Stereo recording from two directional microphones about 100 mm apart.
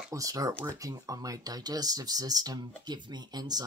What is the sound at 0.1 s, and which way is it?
Speech, 35° right (ahead or behind).